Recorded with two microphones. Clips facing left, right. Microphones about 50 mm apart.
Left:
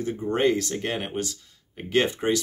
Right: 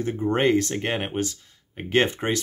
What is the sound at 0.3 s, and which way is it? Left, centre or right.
Speech, right.